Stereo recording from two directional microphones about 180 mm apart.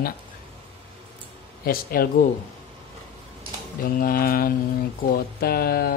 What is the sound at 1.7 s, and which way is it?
Speech, 55° left (ahead or behind).